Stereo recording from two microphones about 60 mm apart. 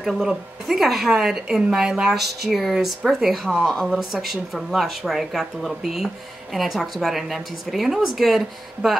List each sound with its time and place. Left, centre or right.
0.0 s a woman's voice: centre
3.5 s speech: centre
3.8 s a woman's voice: centre